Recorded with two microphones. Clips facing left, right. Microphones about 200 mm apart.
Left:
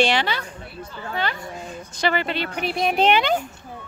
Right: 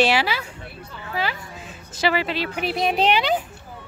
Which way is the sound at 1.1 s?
5° right (ahead or behind).